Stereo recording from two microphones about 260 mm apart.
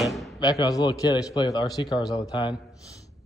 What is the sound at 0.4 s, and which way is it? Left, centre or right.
A man's voice, centre.